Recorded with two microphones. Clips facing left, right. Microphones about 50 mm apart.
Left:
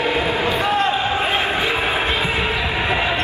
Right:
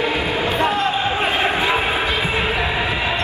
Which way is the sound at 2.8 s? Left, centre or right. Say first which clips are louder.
Left 1 dB; left.